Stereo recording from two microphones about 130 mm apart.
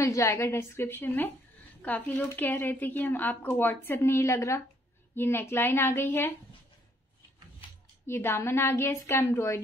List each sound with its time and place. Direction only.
0.0 s a woman's voice: 25° left (ahead or behind)
8.1 s a woman's voice: 20° left (ahead or behind)